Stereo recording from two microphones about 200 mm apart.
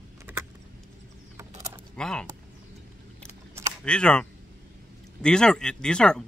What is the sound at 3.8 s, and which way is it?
Speech, 5° left (ahead or behind).